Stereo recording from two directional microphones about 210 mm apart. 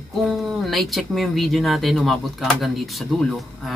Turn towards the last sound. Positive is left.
turn(degrees=0)  # may be behind; listen again after turning